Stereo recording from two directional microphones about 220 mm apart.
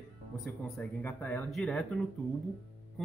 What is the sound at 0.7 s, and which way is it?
Speech, 5° left (ahead or behind).